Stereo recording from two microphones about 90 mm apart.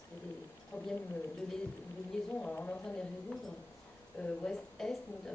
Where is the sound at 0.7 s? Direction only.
20° left (ahead or behind).